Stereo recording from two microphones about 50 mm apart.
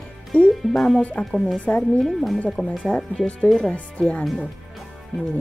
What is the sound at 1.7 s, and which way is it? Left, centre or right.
Speech, centre.